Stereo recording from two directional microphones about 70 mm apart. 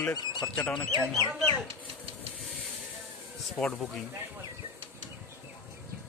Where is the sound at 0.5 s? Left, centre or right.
Centre.